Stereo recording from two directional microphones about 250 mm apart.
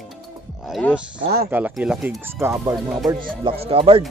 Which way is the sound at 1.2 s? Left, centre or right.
Right.